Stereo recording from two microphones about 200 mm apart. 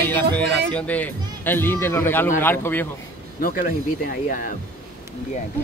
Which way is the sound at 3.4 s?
45° left (ahead or behind).